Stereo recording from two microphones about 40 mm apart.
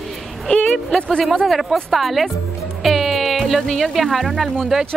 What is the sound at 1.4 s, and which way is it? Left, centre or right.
Speech, centre.